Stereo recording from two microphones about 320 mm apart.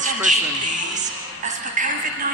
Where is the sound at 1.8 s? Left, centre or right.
Right.